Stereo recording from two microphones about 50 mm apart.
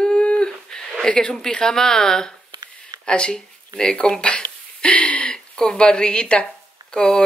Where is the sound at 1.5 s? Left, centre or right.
Centre.